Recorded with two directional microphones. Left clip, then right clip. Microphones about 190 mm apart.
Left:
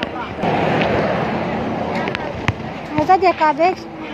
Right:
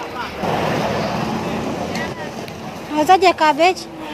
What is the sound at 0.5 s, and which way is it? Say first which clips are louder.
Waves: left 3 dB; 40° left (ahead or behind).